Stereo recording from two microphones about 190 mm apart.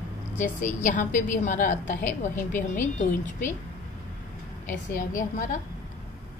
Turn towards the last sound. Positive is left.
turn(degrees=45)  # may be behind; listen again after turning